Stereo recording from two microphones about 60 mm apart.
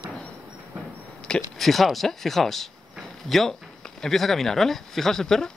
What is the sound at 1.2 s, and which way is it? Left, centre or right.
Speech, centre.